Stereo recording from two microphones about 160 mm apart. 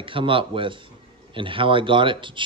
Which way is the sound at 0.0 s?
35° right (ahead or behind).